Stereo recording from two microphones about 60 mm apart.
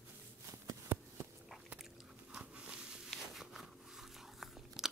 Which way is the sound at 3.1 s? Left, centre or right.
Centre.